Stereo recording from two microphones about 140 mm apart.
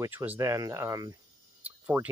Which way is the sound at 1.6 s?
10° right (ahead or behind).